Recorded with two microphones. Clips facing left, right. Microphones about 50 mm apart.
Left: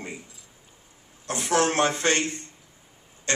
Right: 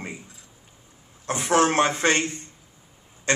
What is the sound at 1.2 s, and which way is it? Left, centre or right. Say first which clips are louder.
Speech: right 3 dB; right.